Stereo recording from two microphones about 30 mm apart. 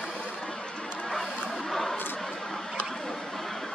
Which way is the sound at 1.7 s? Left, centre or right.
Centre.